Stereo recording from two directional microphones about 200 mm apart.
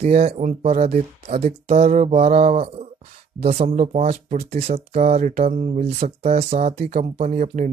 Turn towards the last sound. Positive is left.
turn(degrees=-40)  # may be behind; listen again after turning